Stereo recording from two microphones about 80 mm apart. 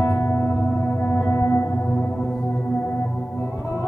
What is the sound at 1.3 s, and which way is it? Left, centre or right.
Music, left.